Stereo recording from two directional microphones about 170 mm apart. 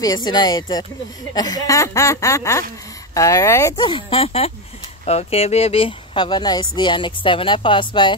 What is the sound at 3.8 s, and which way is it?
Speech, 30° left (ahead or behind).